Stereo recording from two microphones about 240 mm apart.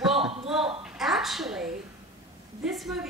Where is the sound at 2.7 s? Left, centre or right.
Centre.